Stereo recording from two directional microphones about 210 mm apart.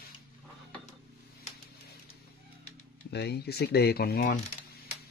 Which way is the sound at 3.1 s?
50° left (ahead or behind).